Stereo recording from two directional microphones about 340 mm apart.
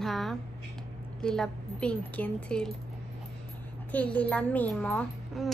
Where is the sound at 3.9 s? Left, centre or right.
Centre.